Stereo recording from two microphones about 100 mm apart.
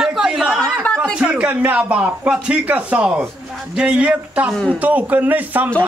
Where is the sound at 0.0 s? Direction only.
5° right (ahead or behind).